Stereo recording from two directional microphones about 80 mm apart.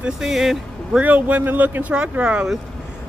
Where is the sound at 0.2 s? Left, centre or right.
Centre.